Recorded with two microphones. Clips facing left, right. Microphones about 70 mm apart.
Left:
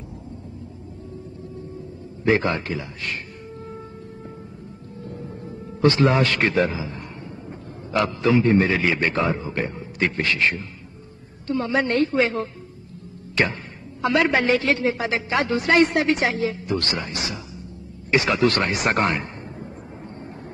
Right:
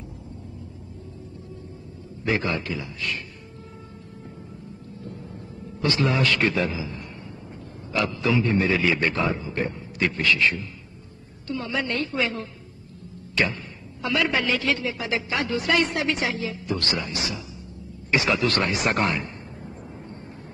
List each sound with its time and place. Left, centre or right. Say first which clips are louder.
2.2 s a man's voice: left 5 dB; left
5.0 s music: left 5 dB; left
5.8 s a man's voice: left 5 dB; left
14.0 s a man's voice: left 5 dB; left